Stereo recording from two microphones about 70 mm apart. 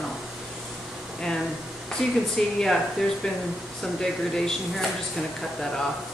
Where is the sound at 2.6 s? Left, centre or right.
Centre.